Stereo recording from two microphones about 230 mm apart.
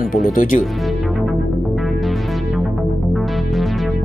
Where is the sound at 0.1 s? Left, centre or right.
Left.